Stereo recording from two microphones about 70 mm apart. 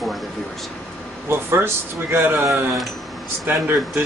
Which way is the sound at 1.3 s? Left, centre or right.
Right.